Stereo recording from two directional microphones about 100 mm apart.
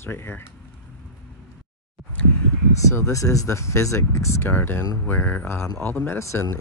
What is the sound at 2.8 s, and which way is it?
Speech, 30° left (ahead or behind).